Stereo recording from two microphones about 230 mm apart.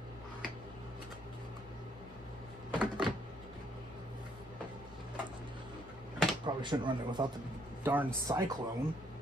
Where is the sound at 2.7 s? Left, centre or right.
Centre.